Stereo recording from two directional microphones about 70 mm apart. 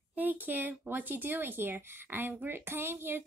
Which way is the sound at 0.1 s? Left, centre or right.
Right.